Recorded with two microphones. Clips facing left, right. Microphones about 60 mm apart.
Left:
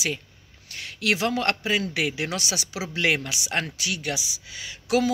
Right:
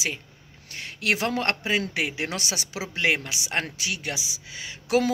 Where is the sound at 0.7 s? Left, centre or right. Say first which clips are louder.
Left 1 dB; right.